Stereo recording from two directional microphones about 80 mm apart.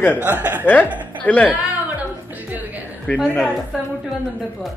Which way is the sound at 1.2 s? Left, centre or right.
Centre.